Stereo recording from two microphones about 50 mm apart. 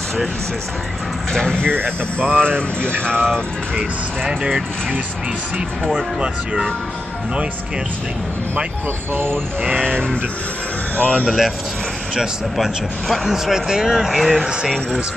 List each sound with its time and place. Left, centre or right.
1.3 s speech: centre
1.7 s speech: right
2.2 s speech: centre
4.4 s speech: centre
6.2 s speech: centre
9.1 s speech: right
11.0 s speech: centre
11.2 s speech: centre